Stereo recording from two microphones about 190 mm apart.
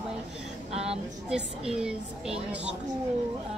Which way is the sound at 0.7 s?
35° right (ahead or behind).